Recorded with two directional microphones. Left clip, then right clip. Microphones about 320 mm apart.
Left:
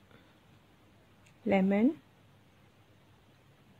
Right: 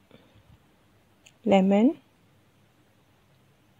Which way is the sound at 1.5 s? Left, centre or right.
Right.